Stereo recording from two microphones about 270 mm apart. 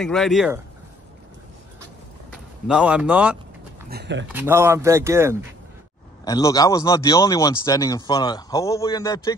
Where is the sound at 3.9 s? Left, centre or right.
Right.